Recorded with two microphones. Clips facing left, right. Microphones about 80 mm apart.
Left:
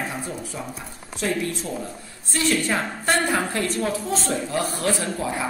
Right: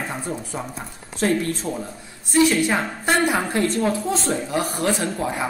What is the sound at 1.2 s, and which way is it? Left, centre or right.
Speech, right.